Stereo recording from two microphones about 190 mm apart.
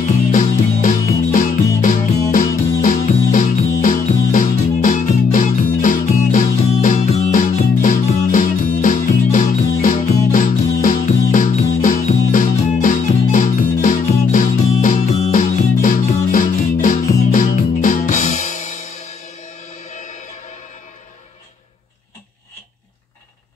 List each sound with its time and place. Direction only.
0.0 s music: 45° left (ahead or behind)